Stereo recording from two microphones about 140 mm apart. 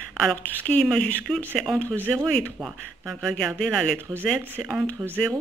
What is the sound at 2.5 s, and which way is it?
A woman's voice, 10° right (ahead or behind).